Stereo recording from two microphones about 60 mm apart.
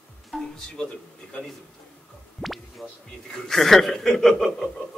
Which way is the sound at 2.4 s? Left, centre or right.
Centre.